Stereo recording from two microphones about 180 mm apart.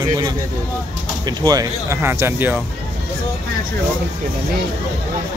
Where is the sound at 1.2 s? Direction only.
20° right (ahead or behind).